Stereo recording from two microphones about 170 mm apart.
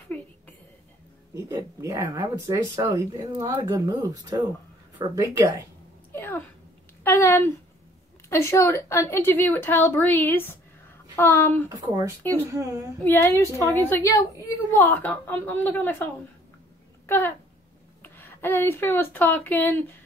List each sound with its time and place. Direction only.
1.3 s speech: 20° right (ahead or behind)
6.1 s a sound: 15° left (ahead or behind)
8.3 s a woman's voice: 15° left (ahead or behind)
11.7 s speech: 20° right (ahead or behind)
12.2 s a woman's voice: 10° left (ahead or behind)
12.5 s speech: 20° right (ahead or behind)
13.0 s a woman's voice: 15° left (ahead or behind)
17.0 s speech: 15° left (ahead or behind)